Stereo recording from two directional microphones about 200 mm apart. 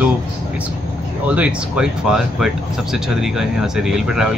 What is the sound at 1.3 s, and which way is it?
Speech, 5° right (ahead or behind).